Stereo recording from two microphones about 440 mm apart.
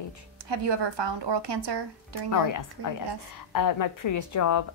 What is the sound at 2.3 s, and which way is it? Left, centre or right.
A woman's voice, left.